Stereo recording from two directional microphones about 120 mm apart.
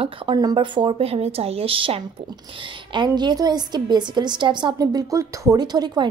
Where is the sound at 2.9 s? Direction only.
40° right (ahead or behind).